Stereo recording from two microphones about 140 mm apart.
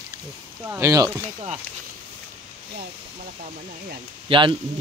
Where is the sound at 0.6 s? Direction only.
20° right (ahead or behind).